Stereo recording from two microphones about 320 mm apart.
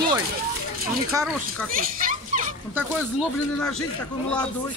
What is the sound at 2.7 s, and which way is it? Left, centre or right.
Speech, centre.